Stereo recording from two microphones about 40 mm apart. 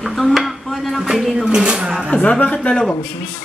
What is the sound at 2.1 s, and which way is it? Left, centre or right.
Speech, left.